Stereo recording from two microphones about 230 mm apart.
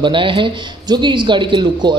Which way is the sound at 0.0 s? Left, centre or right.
Right.